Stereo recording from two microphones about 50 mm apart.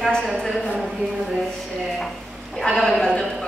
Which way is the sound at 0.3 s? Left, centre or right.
Centre.